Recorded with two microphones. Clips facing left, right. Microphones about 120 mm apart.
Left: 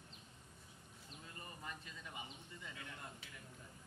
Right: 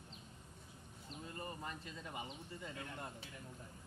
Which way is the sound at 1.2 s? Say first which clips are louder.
Right 6 dB; 40° right (ahead or behind).